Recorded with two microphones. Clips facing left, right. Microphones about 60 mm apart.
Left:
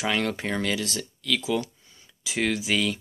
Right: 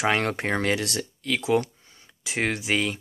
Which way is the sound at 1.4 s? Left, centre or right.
Right.